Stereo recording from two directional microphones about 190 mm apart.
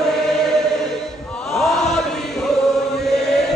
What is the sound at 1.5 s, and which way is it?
Chant, centre (ahead or behind).